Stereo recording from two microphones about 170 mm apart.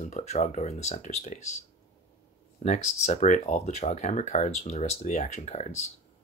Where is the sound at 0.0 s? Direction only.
40° left (ahead or behind).